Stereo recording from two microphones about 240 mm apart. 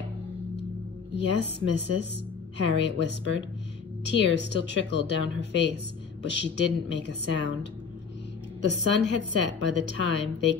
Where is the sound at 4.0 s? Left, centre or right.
Left.